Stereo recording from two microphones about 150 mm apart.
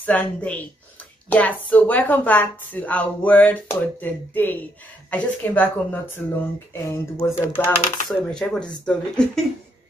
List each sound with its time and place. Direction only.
0.0 s a woman's voice: 10° left (ahead or behind)